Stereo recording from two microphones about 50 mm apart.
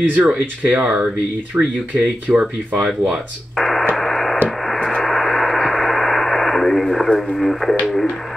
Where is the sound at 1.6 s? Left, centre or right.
Right.